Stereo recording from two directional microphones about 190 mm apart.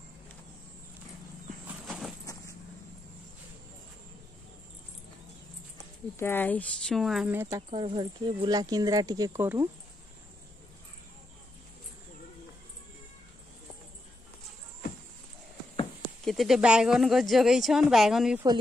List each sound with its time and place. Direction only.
1.7 s horse: centre (ahead or behind)
6.1 s speech: 10° left (ahead or behind)
7.3 s speech: 15° right (ahead or behind)
7.7 s speech: 25° right (ahead or behind)
16.3 s speech: centre (ahead or behind)